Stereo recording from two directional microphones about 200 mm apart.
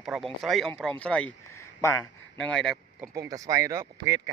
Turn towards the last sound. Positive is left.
turn(degrees=-15)  # may be behind; listen again after turning